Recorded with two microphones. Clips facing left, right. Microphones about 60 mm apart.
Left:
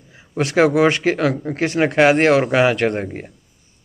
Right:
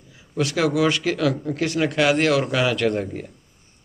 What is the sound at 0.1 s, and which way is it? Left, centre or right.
Speech, left.